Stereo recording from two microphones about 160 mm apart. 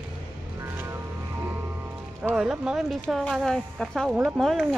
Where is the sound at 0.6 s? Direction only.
15° right (ahead or behind).